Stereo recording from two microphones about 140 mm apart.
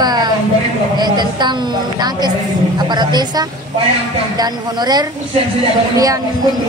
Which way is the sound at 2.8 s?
30° right (ahead or behind).